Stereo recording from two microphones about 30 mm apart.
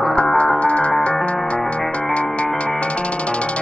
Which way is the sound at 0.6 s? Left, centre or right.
Left.